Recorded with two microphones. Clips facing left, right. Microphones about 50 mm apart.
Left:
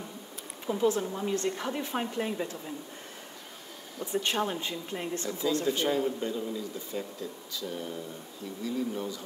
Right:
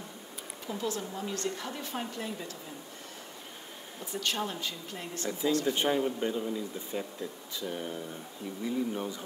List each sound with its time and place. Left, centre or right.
0.7 s a woman's voice: left
4.0 s a woman's voice: left
5.7 s speech: centre